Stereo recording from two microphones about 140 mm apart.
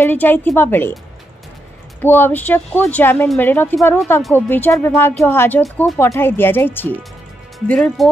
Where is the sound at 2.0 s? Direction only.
15° left (ahead or behind).